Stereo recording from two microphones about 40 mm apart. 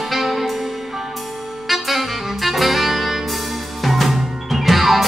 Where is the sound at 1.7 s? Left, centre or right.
Centre.